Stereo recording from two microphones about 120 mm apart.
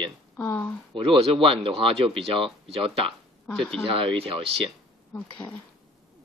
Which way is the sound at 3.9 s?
50° right (ahead or behind).